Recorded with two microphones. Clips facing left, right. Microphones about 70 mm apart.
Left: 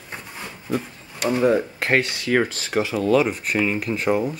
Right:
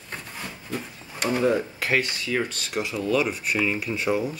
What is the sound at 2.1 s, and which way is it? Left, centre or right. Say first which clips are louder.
Speech: left 6 dB; left.